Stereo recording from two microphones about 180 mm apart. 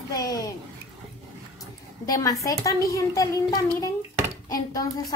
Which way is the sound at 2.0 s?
20° left (ahead or behind).